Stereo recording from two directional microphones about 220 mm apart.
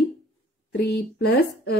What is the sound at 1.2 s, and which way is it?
Speech, 50° left (ahead or behind).